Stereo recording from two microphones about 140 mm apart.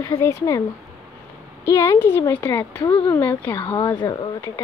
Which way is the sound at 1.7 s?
20° left (ahead or behind).